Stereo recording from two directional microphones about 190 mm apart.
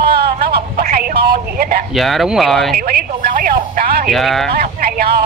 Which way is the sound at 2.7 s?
55° right (ahead or behind).